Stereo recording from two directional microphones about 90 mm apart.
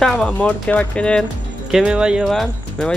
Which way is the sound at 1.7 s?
10° right (ahead or behind).